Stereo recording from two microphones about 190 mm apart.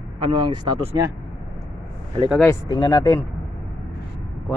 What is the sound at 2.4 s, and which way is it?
Speech, 20° left (ahead or behind).